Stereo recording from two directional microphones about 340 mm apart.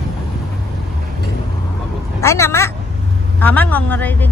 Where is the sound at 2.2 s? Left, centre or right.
Centre.